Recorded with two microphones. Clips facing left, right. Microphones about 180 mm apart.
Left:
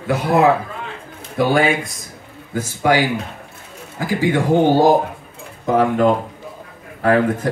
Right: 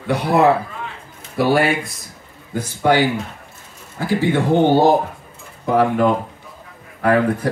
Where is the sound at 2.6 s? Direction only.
10° left (ahead or behind).